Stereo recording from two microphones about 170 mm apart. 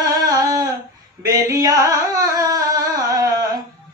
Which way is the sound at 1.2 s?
20° right (ahead or behind).